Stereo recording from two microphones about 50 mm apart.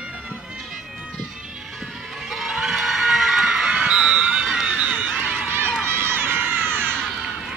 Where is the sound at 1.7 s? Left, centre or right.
Centre.